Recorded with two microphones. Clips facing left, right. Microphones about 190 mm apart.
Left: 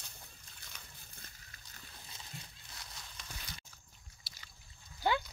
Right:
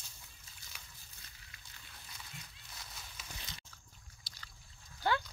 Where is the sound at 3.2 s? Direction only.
5° right (ahead or behind).